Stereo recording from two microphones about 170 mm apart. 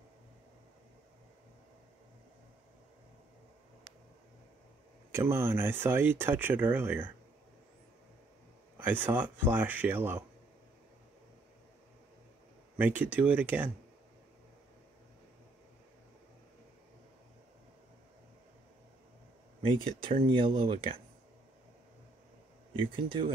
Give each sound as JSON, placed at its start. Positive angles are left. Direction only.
{"t": 5.1, "sound": "speech", "side_deg": -15}
{"t": 8.7, "sound": "speech", "side_deg": -10}
{"t": 12.7, "sound": "speech", "side_deg": -10}
{"t": 19.6, "sound": "speech", "side_deg": -30}
{"t": 22.8, "sound": "speech", "side_deg": -30}